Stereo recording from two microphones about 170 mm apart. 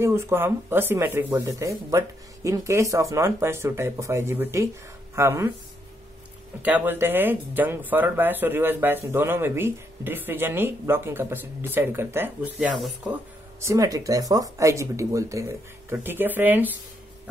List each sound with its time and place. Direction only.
0.0 s speech: 15° right (ahead or behind)
6.6 s speech: 10° right (ahead or behind)
13.6 s speech: 20° right (ahead or behind)